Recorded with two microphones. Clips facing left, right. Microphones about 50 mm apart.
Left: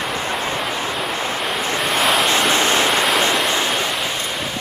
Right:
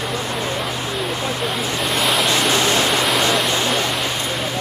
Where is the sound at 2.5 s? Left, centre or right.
Left.